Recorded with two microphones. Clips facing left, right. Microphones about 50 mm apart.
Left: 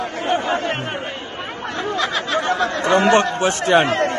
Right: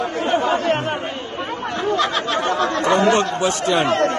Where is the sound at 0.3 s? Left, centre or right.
Centre.